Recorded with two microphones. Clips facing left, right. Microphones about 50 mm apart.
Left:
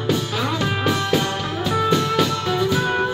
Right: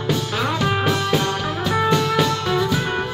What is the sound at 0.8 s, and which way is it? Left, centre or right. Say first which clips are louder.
Music: even; centre.